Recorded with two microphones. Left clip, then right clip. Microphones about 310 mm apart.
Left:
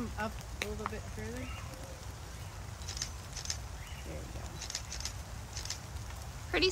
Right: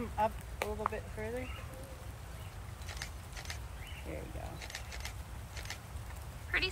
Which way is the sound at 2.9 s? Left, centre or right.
Right.